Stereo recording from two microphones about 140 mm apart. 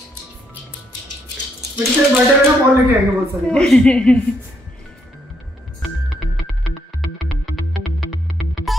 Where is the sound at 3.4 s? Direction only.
5° left (ahead or behind).